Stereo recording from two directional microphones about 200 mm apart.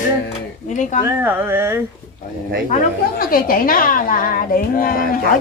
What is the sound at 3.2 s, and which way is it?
A woman's voice, 45° left (ahead or behind).